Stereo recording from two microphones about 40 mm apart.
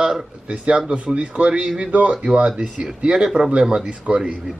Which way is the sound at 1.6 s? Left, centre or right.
Centre.